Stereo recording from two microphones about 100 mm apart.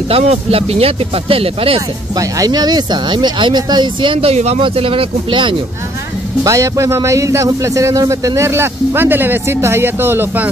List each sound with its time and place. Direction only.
0.1 s speech: 75° right (ahead or behind)
2.1 s speech: 35° right (ahead or behind); by 4.6 s 80° right
4.6 s speech: 65° right (ahead or behind)
6.4 s speech: 30° right (ahead or behind)